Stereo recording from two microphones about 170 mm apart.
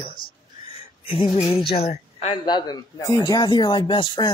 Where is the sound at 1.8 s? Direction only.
40° left (ahead or behind).